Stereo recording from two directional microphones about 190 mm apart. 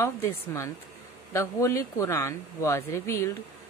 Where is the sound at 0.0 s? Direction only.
15° left (ahead or behind).